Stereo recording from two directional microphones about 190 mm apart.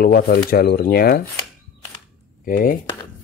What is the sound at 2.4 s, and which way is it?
Speech, 45° left (ahead or behind).